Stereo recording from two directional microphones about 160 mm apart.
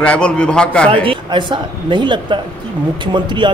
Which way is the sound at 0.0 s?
5° left (ahead or behind).